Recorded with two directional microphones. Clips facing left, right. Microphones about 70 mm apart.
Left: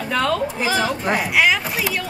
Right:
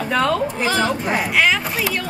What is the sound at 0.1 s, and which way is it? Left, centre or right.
Music, centre.